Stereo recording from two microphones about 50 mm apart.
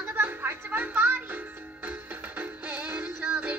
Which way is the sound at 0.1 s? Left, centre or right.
Right.